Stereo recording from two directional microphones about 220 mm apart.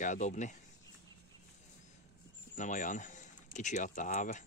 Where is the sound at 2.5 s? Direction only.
35° left (ahead or behind).